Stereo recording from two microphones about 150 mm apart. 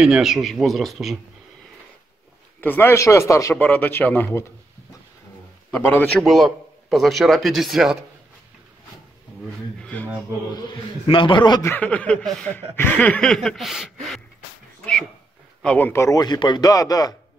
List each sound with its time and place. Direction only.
0.0 s a man's voice: 5° right (ahead or behind)
2.6 s chuckle: 15° left (ahead or behind)
5.7 s chuckle: 10° left (ahead or behind)
6.2 s a man's voice: centre (ahead or behind)
9.8 s a sound: 10° left (ahead or behind)
10.5 s a man's voice: 30° left (ahead or behind)
11.6 s chuckle: 10° left (ahead or behind)
15.6 s a man's voice: 10° left (ahead or behind)